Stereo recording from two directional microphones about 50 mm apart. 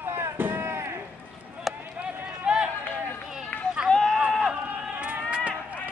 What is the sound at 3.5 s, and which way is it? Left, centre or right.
Run, left.